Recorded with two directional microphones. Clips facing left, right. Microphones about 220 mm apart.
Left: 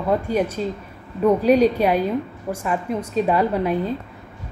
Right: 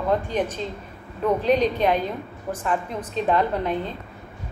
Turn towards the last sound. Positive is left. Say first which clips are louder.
# left 4 dB
turn(degrees=10)  # may be behind; listen again after turning